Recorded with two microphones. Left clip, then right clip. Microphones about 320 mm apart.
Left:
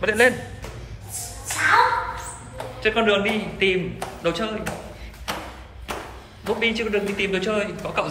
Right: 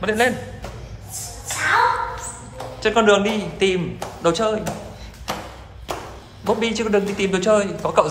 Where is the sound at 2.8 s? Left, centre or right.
Centre.